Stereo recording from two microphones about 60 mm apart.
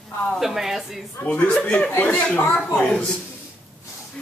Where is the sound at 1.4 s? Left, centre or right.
Left.